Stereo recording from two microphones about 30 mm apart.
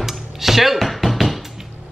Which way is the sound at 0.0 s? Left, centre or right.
Centre.